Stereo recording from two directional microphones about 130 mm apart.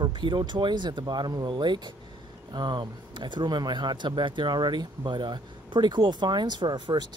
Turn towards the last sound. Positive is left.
turn(degrees=-35)  # may be behind; listen again after turning